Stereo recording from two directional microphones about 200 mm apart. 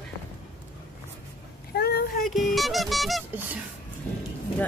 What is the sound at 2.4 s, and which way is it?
Music, centre (ahead or behind).